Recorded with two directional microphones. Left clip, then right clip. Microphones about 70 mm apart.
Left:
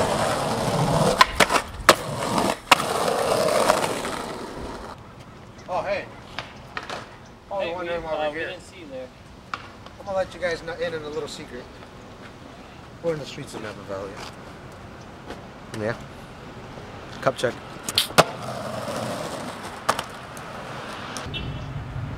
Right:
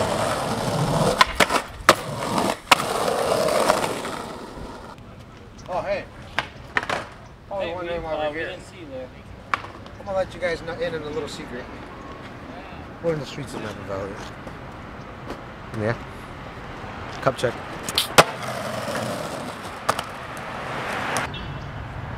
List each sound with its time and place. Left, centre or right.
0.0 s wood: centre
5.7 s boat: centre
6.3 s a sound: right
7.5 s a sound: centre
9.5 s chop: right
10.1 s speech: centre
13.1 s speech: centre
17.2 s arrow: centre
18.1 s skateboard: right; by 20.1 s centre
21.0 s vehicle: right